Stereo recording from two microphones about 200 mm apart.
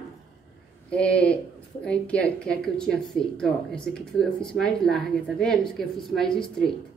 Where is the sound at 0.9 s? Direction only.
5° left (ahead or behind).